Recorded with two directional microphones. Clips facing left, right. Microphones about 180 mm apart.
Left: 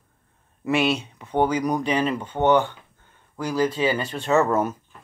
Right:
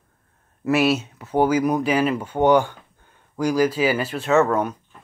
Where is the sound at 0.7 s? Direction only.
5° right (ahead or behind).